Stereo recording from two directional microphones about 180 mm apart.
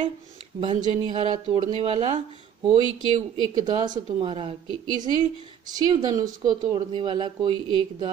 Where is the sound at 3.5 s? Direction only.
25° right (ahead or behind).